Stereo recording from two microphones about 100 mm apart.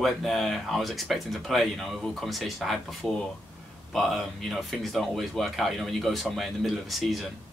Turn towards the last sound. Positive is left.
turn(degrees=0)  # may be behind; listen again after turning